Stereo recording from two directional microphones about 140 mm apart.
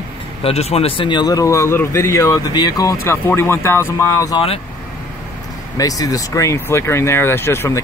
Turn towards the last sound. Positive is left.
turn(degrees=15)  # may be behind; listen again after turning